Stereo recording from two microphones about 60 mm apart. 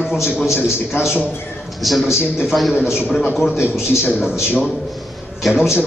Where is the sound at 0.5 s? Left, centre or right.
Left.